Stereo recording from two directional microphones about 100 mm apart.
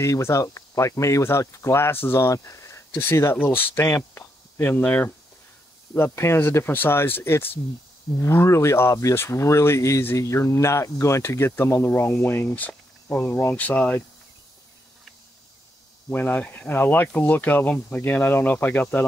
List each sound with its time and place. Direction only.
0.0 s speech: 30° left (ahead or behind); by 14.0 s 15° left (ahead or behind)
16.1 s speech: 15° left (ahead or behind)